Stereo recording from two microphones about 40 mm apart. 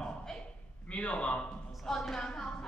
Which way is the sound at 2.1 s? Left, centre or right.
Centre.